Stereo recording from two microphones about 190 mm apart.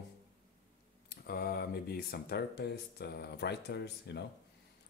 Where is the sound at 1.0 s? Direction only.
55° left (ahead or behind).